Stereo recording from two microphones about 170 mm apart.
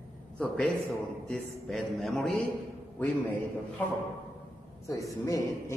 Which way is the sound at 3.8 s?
10° left (ahead or behind).